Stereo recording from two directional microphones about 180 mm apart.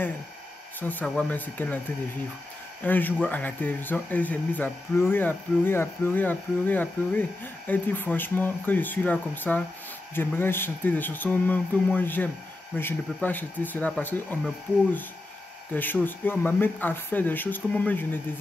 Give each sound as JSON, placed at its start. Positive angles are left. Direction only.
{"t": 0.7, "sound": "speech", "side_deg": 10}
{"t": 2.8, "sound": "speech", "side_deg": 10}